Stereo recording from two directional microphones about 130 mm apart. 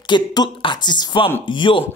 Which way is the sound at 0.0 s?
35° left (ahead or behind).